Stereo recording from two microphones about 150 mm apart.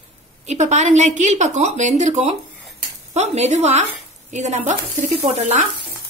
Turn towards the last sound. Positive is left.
turn(degrees=-45)  # may be behind; listen again after turning